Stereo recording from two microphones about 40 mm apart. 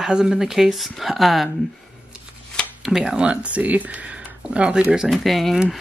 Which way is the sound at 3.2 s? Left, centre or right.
Right.